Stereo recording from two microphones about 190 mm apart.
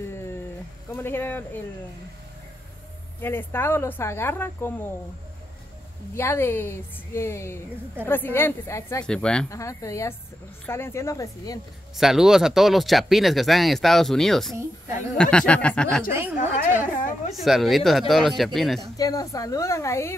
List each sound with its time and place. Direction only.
0.0 s a sound: 15° left (ahead or behind)
0.9 s speech: 10° left (ahead or behind)
3.2 s speech: 10° left (ahead or behind)
6.1 s speech: 15° left (ahead or behind)
9.0 s speech: 5° left (ahead or behind)
9.5 s speech: 15° left (ahead or behind)
12.0 s speech: centre (ahead or behind)
16.1 s speech: 10° right (ahead or behind)
17.3 s speech: centre (ahead or behind)
18.9 s speech: 20° left (ahead or behind)